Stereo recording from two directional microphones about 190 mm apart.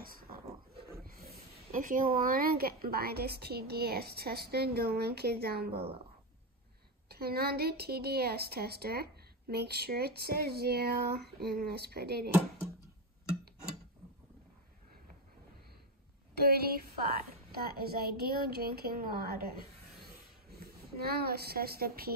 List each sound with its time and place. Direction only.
0.0 s dog: 50° right (ahead or behind)
1.0 s a sound: 50° right (ahead or behind)
2.1 s a woman's voice: 50° right (ahead or behind)
7.1 s a woman's voice: 55° right (ahead or behind)
16.3 s a woman's voice: 55° right (ahead or behind)